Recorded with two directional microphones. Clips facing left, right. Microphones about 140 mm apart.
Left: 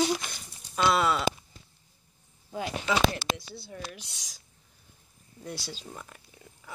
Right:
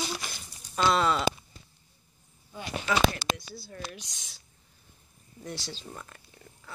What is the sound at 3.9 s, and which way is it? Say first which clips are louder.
Speech: right 1 dB; 10° left (ahead or behind).